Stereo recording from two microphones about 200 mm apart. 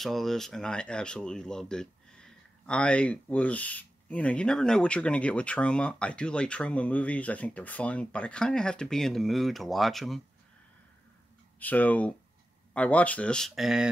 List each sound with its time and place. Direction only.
0.0 s speech: centre (ahead or behind)
11.6 s speech: 10° left (ahead or behind)